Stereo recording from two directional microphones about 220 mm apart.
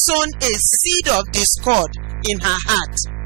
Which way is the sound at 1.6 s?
35° right (ahead or behind).